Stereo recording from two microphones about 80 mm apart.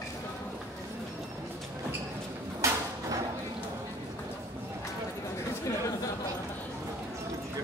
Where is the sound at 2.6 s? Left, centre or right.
Right.